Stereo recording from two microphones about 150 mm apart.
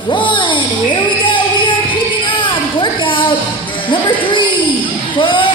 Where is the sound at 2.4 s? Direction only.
35° left (ahead or behind).